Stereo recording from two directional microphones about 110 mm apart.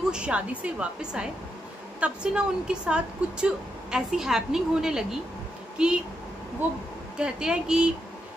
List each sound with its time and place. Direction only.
0.1 s a woman's voice: 10° right (ahead or behind)